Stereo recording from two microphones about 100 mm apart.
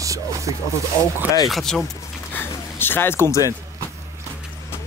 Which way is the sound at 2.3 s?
20° left (ahead or behind).